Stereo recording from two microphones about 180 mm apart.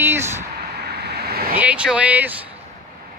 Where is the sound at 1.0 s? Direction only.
60° right (ahead or behind).